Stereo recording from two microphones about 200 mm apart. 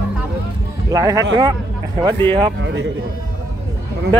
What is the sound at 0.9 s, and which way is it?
Speech, 20° right (ahead or behind).